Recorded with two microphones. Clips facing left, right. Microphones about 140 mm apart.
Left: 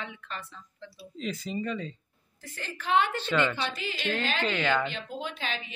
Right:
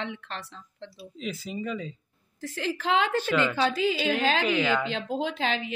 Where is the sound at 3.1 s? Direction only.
10° right (ahead or behind).